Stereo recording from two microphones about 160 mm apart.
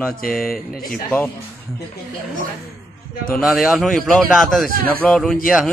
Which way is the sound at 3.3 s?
Centre (ahead or behind).